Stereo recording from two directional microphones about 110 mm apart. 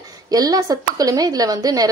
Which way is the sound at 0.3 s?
35° right (ahead or behind).